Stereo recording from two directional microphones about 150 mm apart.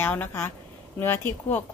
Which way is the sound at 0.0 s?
15° left (ahead or behind).